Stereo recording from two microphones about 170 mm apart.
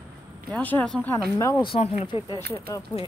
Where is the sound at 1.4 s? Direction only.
25° left (ahead or behind).